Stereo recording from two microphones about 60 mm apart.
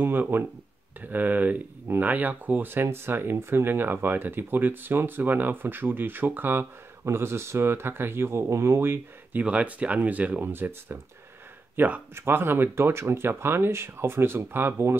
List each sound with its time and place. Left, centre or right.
0.0 s speech: right
7.1 s speech: right
9.4 s speech: right
10.4 s speech: right